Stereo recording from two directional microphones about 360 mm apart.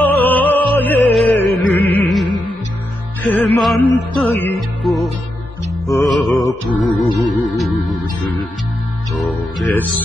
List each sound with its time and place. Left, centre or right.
0.0 s music: centre
9.1 s music: centre